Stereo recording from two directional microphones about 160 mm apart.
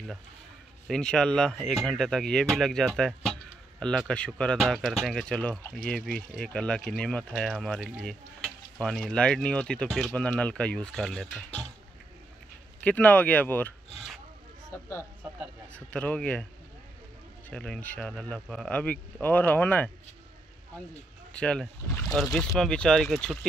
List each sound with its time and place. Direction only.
0.8 s speech: 5° left (ahead or behind)
12.8 s speech: 10° left (ahead or behind)
17.5 s speech: 5° left (ahead or behind)
21.4 s speech: 5° left (ahead or behind)